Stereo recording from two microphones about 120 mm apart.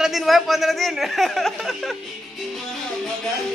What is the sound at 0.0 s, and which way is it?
Speech, centre (ahead or behind).